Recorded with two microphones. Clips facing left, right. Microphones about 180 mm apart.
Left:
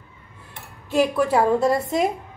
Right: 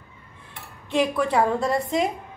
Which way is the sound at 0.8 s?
5° left (ahead or behind).